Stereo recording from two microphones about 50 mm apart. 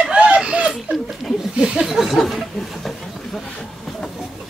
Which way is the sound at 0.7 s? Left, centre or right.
Centre.